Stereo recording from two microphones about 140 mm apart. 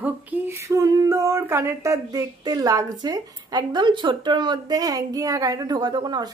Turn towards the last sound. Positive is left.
turn(degrees=-30)  # may be behind; listen again after turning